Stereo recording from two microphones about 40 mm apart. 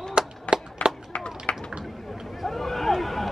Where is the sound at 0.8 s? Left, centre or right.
Left.